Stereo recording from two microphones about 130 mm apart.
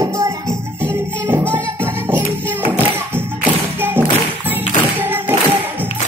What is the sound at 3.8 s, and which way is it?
Clapping, 15° right (ahead or behind).